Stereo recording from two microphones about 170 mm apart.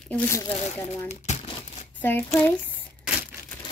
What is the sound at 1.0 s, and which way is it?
Crumpling, 40° left (ahead or behind).